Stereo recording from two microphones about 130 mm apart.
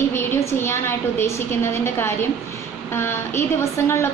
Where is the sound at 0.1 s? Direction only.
20° left (ahead or behind).